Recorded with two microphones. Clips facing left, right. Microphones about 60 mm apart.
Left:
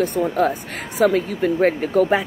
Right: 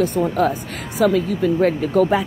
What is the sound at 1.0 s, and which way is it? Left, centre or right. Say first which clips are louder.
Speech: even; left.